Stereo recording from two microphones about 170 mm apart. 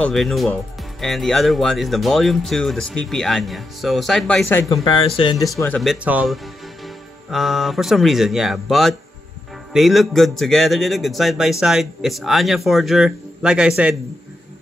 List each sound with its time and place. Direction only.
0.0 s speech: centre (ahead or behind)
4.8 s speech: 30° left (ahead or behind)
5.8 s speech: 5° right (ahead or behind)